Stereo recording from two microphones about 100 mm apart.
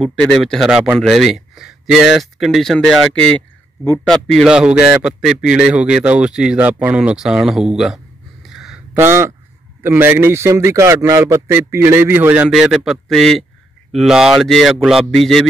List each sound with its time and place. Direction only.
0.1 s speech: 5° left (ahead or behind)
4.5 s speech: 10° right (ahead or behind)
8.5 s a sound: 5° right (ahead or behind)
8.9 s speech: 25° right (ahead or behind)
12.4 s speech: 5° right (ahead or behind)